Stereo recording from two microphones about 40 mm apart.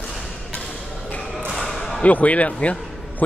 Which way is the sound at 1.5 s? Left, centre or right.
Centre.